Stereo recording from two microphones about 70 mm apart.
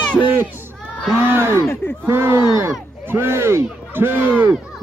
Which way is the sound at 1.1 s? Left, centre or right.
Right.